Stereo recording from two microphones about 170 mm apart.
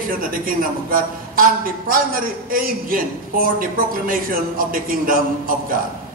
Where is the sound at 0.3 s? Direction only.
55° right (ahead or behind).